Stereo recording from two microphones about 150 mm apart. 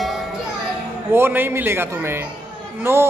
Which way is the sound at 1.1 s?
15° right (ahead or behind).